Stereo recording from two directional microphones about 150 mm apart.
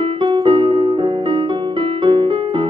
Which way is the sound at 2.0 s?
35° right (ahead or behind).